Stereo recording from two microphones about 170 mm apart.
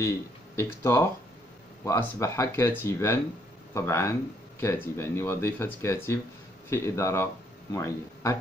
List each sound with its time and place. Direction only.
0.6 s speech: 15° left (ahead or behind)